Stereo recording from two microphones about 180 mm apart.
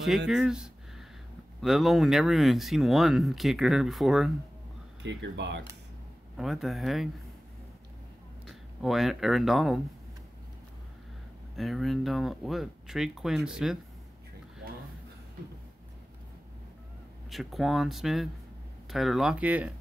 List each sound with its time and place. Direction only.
0.3 s a sound: 5° right (ahead or behind)
1.6 s speech: centre (ahead or behind)
5.0 s speech: 80° right
6.3 s speech: centre (ahead or behind)
8.5 s speech: centre (ahead or behind)
11.5 s speech: centre (ahead or behind)
17.3 s speech: centre (ahead or behind)